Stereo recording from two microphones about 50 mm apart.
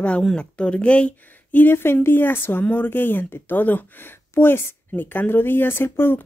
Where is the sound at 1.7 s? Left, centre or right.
Left.